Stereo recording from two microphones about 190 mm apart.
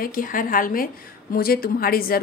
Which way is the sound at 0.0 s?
45° left (ahead or behind).